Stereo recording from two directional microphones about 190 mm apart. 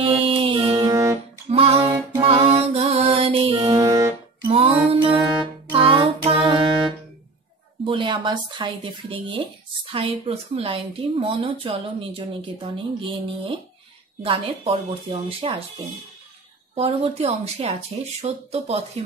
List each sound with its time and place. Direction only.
0.0 s music: 30° right (ahead or behind)
1.5 s music: 30° right (ahead or behind)
3.6 s music: 15° right (ahead or behind)
4.5 s music: 30° right (ahead or behind)
7.8 s a woman's voice: 25° right (ahead or behind)
16.7 s speech: 30° right (ahead or behind)